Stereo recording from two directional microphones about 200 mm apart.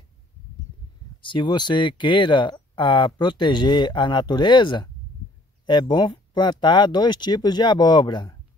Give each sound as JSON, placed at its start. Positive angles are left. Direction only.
{"t": 1.2, "sound": "speech", "side_deg": 25}